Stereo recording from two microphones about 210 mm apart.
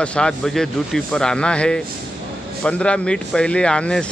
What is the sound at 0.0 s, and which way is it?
Speech, 5° left (ahead or behind).